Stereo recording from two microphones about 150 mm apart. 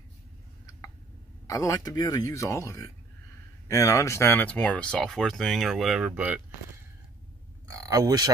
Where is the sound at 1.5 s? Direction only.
20° left (ahead or behind); by 6.4 s 10° right (ahead or behind).